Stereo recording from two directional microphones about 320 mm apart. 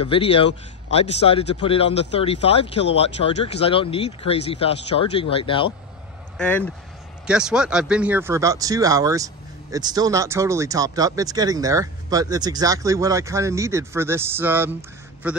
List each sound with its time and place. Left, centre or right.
0.0 s speech: centre
6.3 s speech: centre